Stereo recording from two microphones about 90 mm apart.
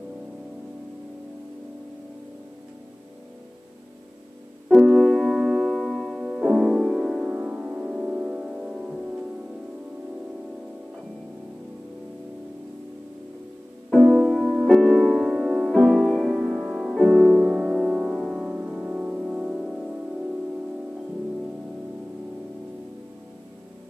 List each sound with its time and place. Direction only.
4.6 s music: centre (ahead or behind)
7.3 s music: 15° right (ahead or behind)
14.0 s music: 5° right (ahead or behind)
15.7 s music: 5° left (ahead or behind)
16.3 s music: 5° right (ahead or behind)